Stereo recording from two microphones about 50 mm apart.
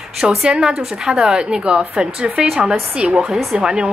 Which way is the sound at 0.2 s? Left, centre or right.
Centre.